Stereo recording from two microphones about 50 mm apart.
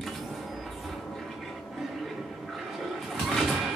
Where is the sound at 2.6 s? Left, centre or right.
Centre.